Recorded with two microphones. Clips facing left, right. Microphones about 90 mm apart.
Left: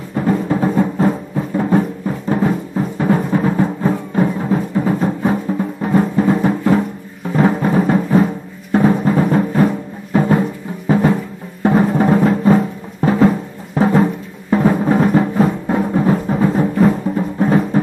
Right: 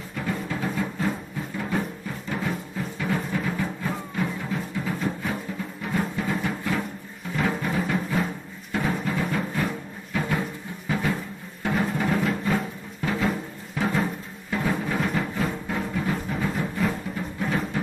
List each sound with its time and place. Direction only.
0.1 s music: 40° left (ahead or behind)